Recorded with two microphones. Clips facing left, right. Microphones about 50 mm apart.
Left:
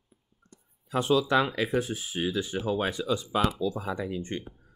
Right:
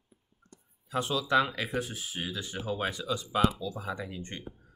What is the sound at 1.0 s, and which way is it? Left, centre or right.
Speech, left.